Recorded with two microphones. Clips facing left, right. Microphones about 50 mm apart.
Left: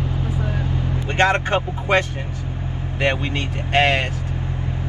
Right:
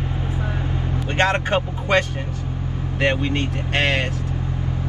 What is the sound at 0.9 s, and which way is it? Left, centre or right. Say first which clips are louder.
Vehicle: left 2 dB; left.